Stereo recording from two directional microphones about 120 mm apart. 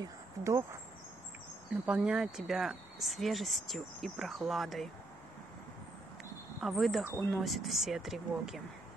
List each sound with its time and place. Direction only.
0.0 s speech: 25° right (ahead or behind)
1.9 s speech: 5° right (ahead or behind)
6.6 s speech: centre (ahead or behind)